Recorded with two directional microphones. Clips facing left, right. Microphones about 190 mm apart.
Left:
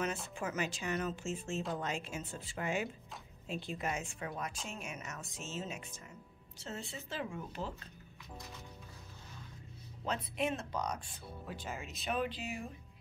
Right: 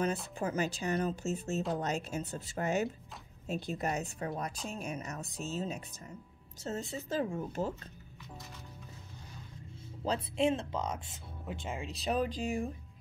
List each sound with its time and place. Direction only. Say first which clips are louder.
0.4 s a woman's voice: right 4 dB; 35° right (ahead or behind)
10.0 s speech: right 6 dB; 30° right (ahead or behind); by 12.6 s 45° right (ahead or behind)